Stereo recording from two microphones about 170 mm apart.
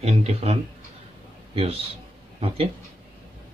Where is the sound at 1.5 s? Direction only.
35° right (ahead or behind).